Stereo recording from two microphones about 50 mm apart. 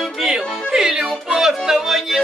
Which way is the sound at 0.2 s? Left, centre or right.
Centre.